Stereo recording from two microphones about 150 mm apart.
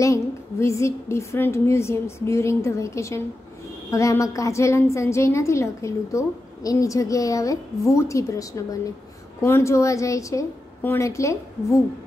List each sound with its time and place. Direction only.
0.0 s a woman's voice: 20° left (ahead or behind)